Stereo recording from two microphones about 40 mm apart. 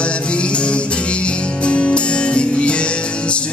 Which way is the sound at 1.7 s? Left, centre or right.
Left.